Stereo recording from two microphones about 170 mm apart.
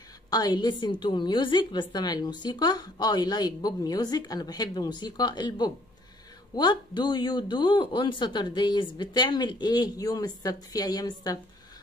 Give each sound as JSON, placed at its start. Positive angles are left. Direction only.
{"t": 0.3, "sound": "a woman's voice", "side_deg": 25}